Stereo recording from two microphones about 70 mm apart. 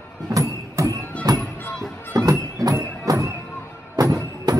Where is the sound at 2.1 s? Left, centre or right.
Right.